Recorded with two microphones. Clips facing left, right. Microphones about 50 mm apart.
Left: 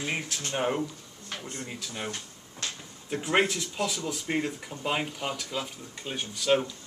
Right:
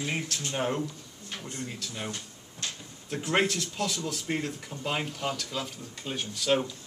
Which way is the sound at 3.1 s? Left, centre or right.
Centre.